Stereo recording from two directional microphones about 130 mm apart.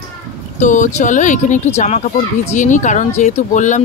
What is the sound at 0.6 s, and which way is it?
Speech, 70° left (ahead or behind).